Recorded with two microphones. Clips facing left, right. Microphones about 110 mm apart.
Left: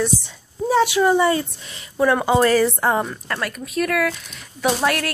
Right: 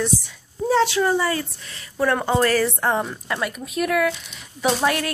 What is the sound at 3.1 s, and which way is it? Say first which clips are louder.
A woman's voice: even; 5° right (ahead or behind).